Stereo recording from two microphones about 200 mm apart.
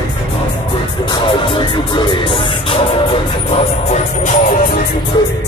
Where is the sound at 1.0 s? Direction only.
25° left (ahead or behind); by 4.8 s 40° left (ahead or behind).